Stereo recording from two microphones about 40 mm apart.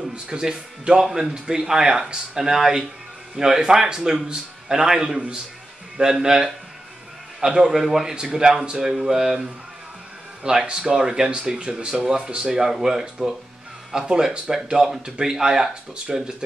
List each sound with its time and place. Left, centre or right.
0.1 s speech: centre
12.5 s speech: centre